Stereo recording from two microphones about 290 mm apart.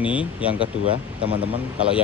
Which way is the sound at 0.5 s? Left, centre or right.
Centre.